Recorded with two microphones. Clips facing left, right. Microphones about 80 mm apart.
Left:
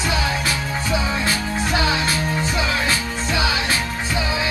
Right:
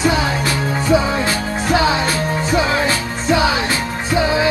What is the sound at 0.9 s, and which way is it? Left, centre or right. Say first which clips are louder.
Music: right 7 dB; right.